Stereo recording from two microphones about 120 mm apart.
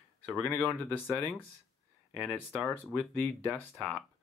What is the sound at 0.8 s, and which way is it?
Speech, 15° left (ahead or behind).